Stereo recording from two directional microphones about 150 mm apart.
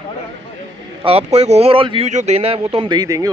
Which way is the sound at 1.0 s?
40° right (ahead or behind).